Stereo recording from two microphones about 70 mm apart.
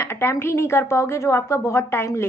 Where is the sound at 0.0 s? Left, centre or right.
Left.